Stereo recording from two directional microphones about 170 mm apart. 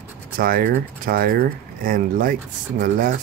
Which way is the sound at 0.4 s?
60° right (ahead or behind).